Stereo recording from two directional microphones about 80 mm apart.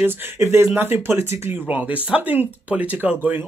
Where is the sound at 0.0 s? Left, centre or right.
Right.